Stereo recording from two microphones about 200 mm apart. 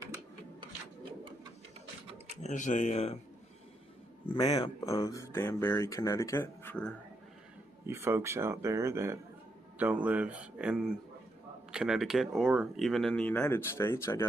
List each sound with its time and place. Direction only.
0.0 s a sound: 15° right (ahead or behind)
2.4 s speech: 40° left (ahead or behind)
4.3 s speech: 20° left (ahead or behind)
7.8 s speech: 10° right (ahead or behind); by 14.2 s 15° left (ahead or behind)